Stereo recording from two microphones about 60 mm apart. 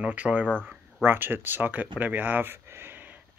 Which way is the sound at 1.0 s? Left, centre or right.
Right.